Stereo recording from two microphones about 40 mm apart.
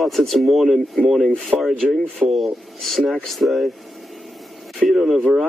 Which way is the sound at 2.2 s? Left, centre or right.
Right.